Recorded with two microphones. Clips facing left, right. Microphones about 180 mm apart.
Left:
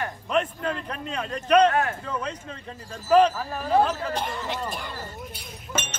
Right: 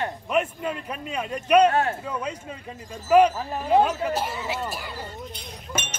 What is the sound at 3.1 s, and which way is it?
Speech, 15° right (ahead or behind).